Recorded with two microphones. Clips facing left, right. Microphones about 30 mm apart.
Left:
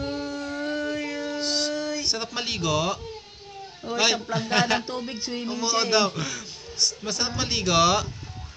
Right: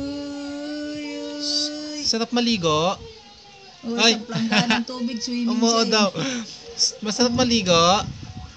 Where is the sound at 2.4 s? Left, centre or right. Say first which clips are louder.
Right 7 dB; right.